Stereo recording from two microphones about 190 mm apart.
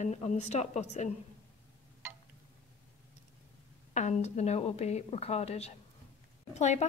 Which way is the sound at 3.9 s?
35° left (ahead or behind).